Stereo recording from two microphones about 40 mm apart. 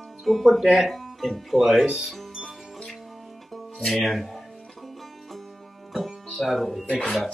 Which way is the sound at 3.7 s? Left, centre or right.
Centre.